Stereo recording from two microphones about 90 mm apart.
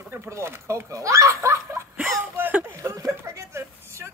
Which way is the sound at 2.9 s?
35° right (ahead or behind).